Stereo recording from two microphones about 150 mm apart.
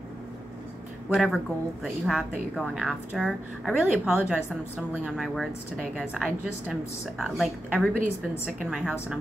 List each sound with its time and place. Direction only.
1.1 s a woman's voice: centre (ahead or behind)
4.9 s a woman's voice: 5° left (ahead or behind)